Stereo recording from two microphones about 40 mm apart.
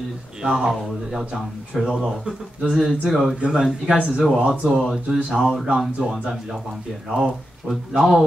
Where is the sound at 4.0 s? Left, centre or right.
Right.